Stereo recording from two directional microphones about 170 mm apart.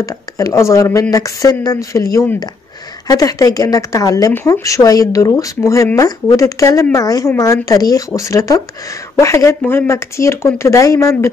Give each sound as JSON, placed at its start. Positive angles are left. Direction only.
{"t": 0.0, "sound": "speech", "side_deg": 20}